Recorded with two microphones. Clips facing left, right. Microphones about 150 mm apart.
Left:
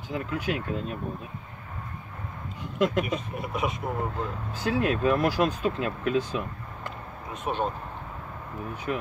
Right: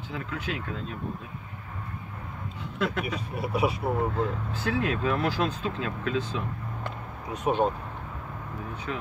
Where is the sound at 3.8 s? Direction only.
35° right (ahead or behind).